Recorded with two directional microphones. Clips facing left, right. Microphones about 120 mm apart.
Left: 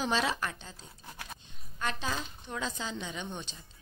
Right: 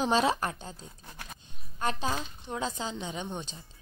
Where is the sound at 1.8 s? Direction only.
40° right (ahead or behind).